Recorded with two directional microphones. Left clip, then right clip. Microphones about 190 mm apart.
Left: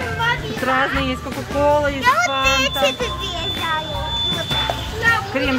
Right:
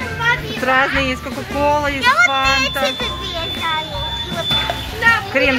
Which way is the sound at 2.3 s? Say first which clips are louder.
Right 2 dB; 5° right (ahead or behind).